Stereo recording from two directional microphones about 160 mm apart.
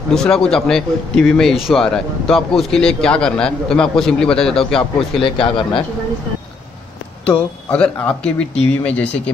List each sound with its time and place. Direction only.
0.1 s speech: 5° left (ahead or behind)
5.2 s speech: 35° left (ahead or behind)
7.2 s speech: 5° left (ahead or behind)